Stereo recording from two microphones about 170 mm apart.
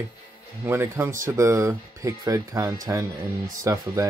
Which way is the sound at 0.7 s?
15° right (ahead or behind).